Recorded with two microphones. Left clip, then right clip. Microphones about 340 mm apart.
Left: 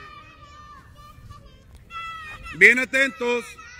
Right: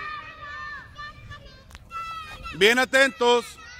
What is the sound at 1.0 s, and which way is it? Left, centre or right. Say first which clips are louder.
Children playing: right 8 dB; right.